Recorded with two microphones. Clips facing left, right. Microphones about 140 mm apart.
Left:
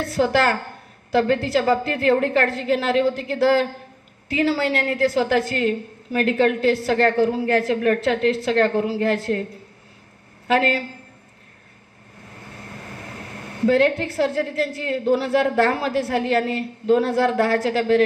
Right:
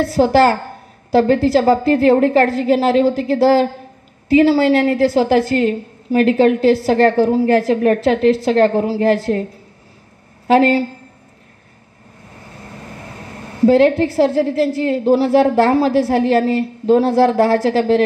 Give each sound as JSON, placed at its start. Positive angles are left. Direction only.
{"t": 0.0, "sound": "a woman's voice", "side_deg": -35}
{"t": 10.4, "sound": "speech", "side_deg": -35}
{"t": 13.7, "sound": "a woman's voice", "side_deg": -35}